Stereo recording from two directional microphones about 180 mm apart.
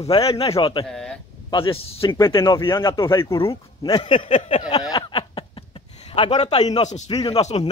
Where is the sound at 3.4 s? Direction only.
30° left (ahead or behind).